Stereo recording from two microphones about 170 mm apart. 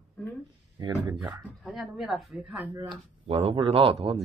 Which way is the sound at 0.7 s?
25° right (ahead or behind).